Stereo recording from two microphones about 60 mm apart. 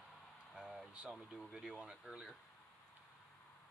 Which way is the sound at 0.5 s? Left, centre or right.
Centre.